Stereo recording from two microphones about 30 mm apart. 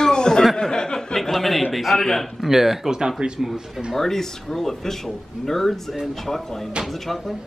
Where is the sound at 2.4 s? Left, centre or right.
Centre.